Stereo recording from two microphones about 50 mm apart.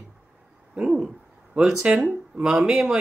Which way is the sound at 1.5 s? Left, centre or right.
Centre.